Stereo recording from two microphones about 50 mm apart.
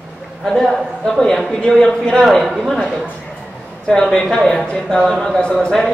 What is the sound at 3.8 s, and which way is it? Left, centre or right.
Speech, centre.